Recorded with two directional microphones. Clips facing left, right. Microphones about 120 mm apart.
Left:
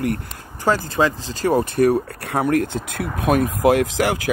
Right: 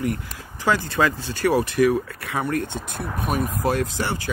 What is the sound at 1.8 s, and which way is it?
Speech, 60° left (ahead or behind).